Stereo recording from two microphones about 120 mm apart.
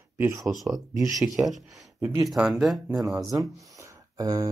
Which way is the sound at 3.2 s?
30° right (ahead or behind).